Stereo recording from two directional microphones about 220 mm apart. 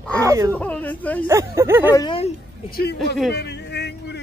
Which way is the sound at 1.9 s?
20° left (ahead or behind).